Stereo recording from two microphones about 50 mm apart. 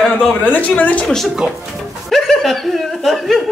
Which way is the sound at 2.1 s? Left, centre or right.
Centre.